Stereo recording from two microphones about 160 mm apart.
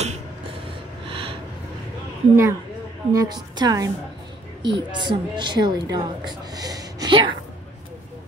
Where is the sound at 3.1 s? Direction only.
20° right (ahead or behind).